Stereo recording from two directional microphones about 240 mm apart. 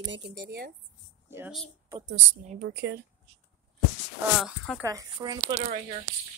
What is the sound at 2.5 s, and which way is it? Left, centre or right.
Speech, right.